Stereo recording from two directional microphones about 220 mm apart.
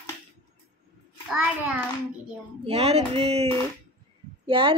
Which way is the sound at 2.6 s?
25° right (ahead or behind).